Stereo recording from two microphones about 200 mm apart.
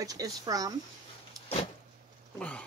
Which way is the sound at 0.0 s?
20° right (ahead or behind).